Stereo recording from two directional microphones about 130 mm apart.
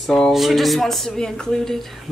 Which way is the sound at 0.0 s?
Centre (ahead or behind).